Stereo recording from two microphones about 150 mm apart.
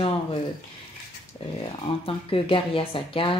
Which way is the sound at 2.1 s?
35° left (ahead or behind).